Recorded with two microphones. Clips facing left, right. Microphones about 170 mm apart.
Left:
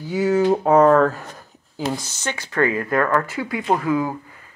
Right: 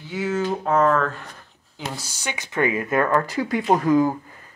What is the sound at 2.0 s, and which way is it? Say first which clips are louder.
Speech: left 3 dB; 10° right (ahead or behind).